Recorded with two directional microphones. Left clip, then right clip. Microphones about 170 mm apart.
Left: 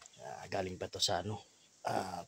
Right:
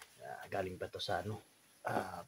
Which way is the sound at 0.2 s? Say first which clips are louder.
Left 1 dB; 30° left (ahead or behind).